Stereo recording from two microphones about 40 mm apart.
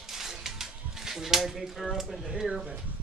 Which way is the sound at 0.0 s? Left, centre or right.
Centre.